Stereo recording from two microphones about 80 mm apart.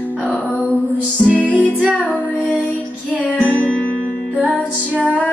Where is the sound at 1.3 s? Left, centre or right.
Centre.